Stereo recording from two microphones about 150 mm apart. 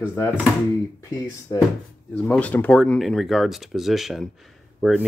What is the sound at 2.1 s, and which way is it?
Speech, 10° left (ahead or behind).